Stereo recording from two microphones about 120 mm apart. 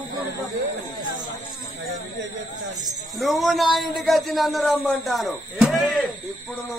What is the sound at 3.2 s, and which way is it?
A man's voice, centre (ahead or behind).